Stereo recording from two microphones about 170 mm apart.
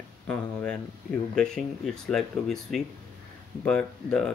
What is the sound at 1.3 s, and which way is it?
Speech, 5° left (ahead or behind).